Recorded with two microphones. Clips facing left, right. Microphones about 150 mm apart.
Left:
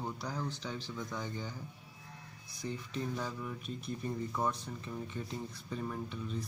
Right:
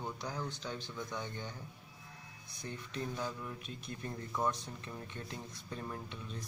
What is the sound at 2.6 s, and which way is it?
Speech, 55° right (ahead or behind).